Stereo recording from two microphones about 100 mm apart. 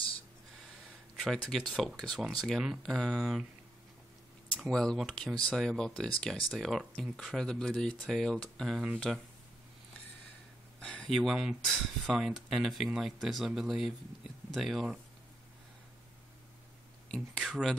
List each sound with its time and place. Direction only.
1.1 s a sound: 5° right (ahead or behind)
1.5 s speech: 5° left (ahead or behind)
4.6 s speech: centre (ahead or behind)
10.8 s a sound: 10° left (ahead or behind)
11.6 s speech: centre (ahead or behind)
17.1 s speech: 5° right (ahead or behind)